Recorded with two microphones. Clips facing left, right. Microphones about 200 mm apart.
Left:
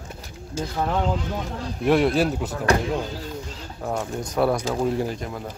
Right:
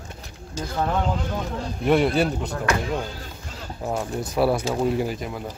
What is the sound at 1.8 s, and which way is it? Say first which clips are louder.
Speech: even; centre (ahead or behind).